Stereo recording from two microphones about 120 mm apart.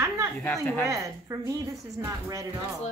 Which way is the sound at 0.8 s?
25° right (ahead or behind).